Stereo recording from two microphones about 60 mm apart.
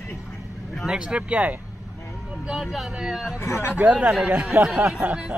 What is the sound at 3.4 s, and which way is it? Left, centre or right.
Speech, left.